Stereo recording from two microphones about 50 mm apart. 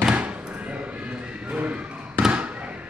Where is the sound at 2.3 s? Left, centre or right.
Right.